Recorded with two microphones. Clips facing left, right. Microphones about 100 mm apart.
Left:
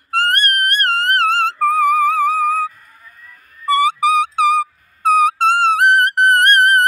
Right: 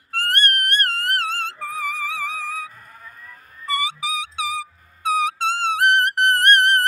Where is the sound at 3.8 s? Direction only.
50° left (ahead or behind).